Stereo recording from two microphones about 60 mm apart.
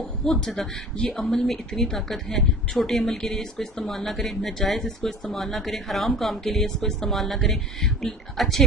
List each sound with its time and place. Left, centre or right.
0.2 s a woman's voice: centre
0.6 s speech: centre
1.2 s a woman's voice: centre